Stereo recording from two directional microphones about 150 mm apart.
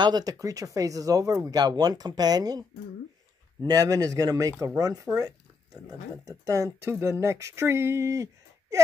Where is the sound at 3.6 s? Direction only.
25° right (ahead or behind).